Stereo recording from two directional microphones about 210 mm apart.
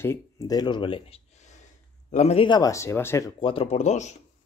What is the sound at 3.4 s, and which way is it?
Speech, 25° left (ahead or behind).